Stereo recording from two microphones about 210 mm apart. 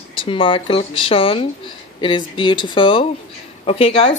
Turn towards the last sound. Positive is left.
turn(degrees=25)  # may be behind; listen again after turning